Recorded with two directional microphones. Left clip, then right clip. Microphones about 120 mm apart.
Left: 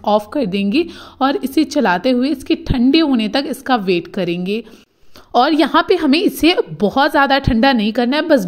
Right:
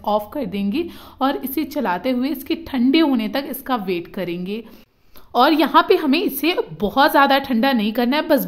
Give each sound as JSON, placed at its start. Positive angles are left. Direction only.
{"t": 0.0, "sound": "a woman's voice", "side_deg": 35}